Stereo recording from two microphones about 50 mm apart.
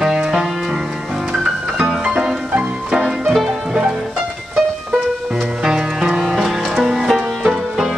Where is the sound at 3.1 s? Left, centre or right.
Centre.